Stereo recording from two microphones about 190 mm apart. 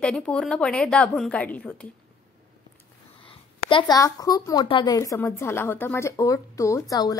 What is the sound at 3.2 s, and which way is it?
A woman's voice, 25° left (ahead or behind).